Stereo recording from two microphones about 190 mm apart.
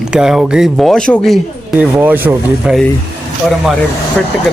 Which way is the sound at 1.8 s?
10° right (ahead or behind).